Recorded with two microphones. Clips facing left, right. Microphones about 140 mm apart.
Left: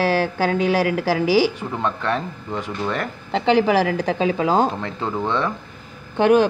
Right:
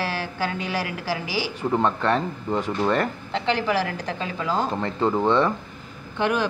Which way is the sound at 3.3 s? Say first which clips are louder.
Left 7 dB; 55° left (ahead or behind).